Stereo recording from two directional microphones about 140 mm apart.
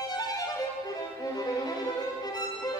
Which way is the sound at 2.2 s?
25° left (ahead or behind).